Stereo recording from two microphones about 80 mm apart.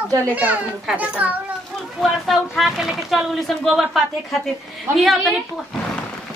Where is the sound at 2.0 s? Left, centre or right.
Centre.